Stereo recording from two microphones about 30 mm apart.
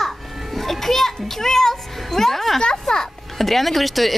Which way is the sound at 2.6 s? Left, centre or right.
Centre.